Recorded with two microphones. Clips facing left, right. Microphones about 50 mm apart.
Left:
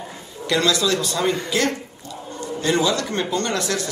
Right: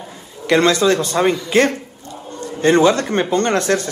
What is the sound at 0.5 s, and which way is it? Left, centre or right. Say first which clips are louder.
Speech: right 6 dB; right.